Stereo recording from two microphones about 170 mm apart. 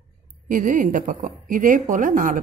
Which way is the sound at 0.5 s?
50° right (ahead or behind).